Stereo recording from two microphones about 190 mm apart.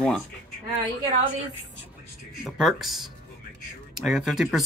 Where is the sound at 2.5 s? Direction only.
Centre (ahead or behind).